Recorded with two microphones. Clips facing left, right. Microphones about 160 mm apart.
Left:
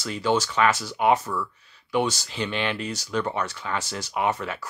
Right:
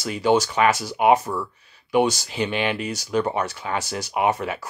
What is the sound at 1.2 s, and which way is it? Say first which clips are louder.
Speech: right 2 dB; 35° right (ahead or behind).